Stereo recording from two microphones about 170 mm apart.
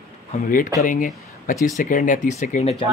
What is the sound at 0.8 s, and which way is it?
Speech, 50° left (ahead or behind).